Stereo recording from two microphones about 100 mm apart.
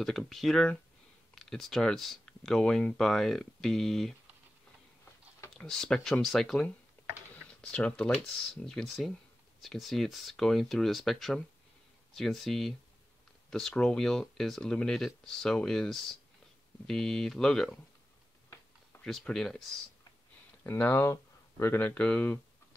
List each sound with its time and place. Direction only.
0.0 s speech: 5° left (ahead or behind)
5.6 s speech: 5° left (ahead or behind)
7.6 s speech: 10° left (ahead or behind)
19.0 s speech: 5° left (ahead or behind)
20.6 s speech: 20° left (ahead or behind)